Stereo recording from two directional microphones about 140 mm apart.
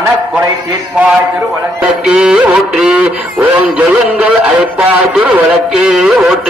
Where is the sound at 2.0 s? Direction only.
5° right (ahead or behind).